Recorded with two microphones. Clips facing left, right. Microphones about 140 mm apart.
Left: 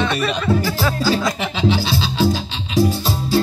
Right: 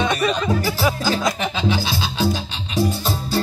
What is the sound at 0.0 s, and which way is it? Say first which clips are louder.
Speech: even; 15° right (ahead or behind).